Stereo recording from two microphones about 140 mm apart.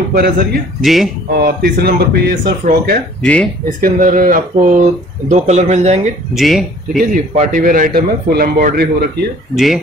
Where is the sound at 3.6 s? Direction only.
85° right.